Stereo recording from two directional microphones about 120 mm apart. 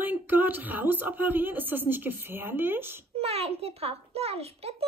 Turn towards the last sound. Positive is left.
turn(degrees=-55)  # may be behind; listen again after turning